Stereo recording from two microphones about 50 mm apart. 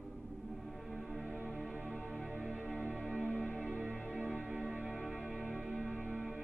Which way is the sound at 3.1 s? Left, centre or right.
Right.